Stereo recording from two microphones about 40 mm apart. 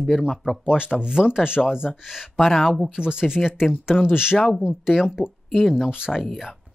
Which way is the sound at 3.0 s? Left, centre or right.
Centre.